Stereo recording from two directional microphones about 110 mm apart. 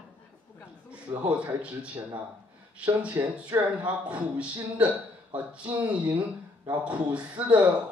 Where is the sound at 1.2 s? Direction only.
10° right (ahead or behind).